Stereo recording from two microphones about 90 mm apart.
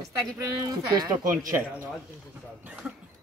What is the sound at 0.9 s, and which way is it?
Speech, 45° right (ahead or behind).